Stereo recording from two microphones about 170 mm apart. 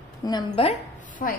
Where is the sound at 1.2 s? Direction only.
55° left (ahead or behind).